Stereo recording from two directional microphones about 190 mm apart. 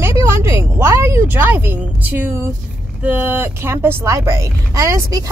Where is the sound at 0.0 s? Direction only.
15° right (ahead or behind).